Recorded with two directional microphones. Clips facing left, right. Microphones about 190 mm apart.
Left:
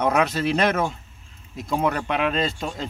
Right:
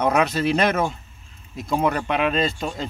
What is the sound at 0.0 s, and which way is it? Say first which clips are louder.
Speech: right 1 dB; centre (ahead or behind).